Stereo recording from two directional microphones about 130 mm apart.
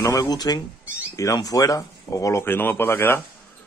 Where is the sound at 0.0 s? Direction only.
25° left (ahead or behind).